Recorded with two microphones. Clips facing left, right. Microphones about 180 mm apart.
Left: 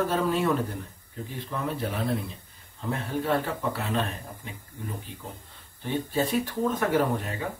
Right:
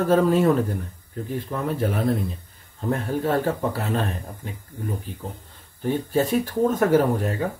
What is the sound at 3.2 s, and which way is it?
Speech, 40° right (ahead or behind).